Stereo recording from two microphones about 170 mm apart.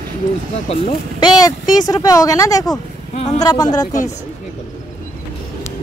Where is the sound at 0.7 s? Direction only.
25° left (ahead or behind).